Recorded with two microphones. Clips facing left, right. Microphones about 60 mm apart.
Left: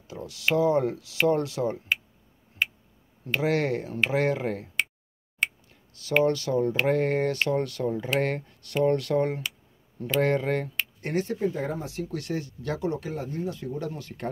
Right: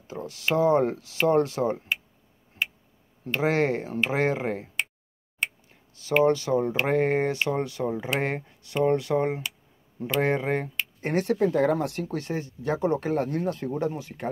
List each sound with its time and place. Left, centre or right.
0.1 s speech: right
3.3 s speech: right
5.7 s speech: right
11.1 s speech: right
12.1 s speech: right
13.1 s speech: right
13.9 s speech: centre